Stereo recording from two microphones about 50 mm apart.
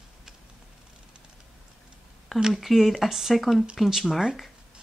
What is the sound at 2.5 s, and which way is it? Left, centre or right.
Speech, centre.